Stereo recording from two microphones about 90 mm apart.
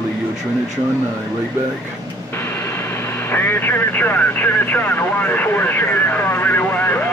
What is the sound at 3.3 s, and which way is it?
Speech, 25° left (ahead or behind).